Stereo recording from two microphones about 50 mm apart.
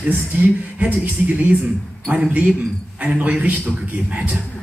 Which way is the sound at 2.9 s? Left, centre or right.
Right.